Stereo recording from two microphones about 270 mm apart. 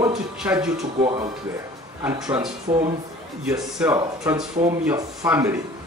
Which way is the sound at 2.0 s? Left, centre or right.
Centre.